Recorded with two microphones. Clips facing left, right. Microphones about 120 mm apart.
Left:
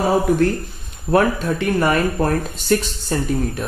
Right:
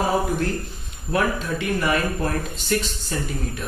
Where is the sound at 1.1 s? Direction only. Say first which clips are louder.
Left 6 dB; 40° left (ahead or behind).